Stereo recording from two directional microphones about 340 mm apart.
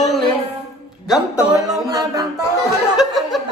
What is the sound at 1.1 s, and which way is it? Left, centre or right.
Music, centre.